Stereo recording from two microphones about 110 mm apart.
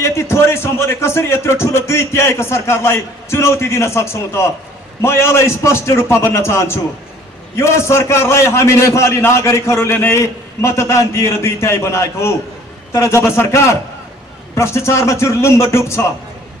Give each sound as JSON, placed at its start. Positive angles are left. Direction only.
{"t": 0.0, "sound": "a man's voice", "side_deg": 25}